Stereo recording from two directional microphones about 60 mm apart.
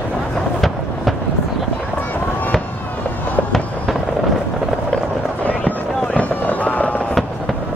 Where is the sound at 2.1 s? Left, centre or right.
Left.